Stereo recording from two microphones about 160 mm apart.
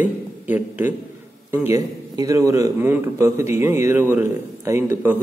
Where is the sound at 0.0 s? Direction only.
10° right (ahead or behind).